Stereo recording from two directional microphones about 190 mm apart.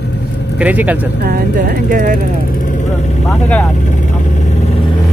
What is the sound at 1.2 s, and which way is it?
Speech, 55° right (ahead or behind).